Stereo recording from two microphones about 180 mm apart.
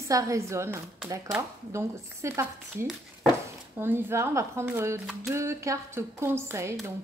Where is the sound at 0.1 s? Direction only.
15° right (ahead or behind).